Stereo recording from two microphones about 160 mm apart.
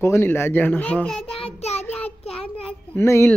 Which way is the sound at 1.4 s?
40° left (ahead or behind).